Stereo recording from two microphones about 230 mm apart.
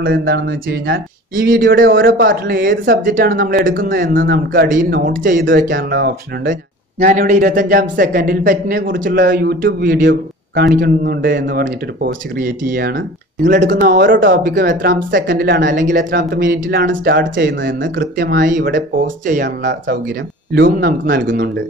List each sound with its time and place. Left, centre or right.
0.0 s a man's voice: right
7.0 s a man's voice: right
14.4 s a man's voice: right
15.0 s a man's voice: right
18.4 s a man's voice: right
19.4 s a man's voice: right